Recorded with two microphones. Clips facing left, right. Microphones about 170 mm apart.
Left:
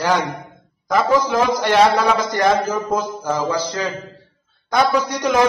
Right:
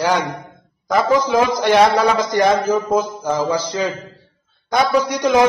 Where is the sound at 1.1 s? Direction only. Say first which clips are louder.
Right 2 dB; 20° right (ahead or behind).